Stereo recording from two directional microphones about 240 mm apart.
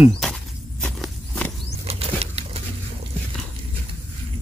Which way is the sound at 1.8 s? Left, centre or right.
Right.